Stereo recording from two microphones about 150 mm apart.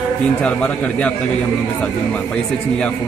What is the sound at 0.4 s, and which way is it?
A man's voice, 10° left (ahead or behind).